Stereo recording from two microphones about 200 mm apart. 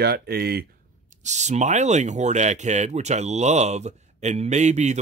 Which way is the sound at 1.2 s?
35° right (ahead or behind).